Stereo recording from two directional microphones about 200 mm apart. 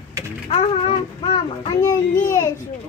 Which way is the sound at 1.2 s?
25° left (ahead or behind).